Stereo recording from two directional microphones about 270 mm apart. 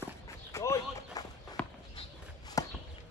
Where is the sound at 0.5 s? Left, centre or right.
Centre.